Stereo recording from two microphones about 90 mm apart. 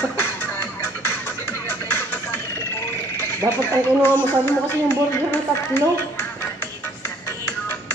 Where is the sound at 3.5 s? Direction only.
25° left (ahead or behind).